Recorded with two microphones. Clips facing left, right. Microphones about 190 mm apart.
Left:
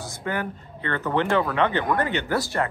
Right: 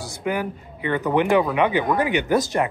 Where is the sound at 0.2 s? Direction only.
15° right (ahead or behind).